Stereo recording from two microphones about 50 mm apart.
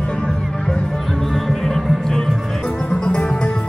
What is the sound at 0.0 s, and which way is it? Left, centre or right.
Music, centre.